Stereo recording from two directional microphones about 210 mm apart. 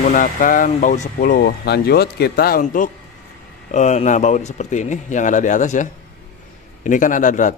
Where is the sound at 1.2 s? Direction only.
45° left (ahead or behind).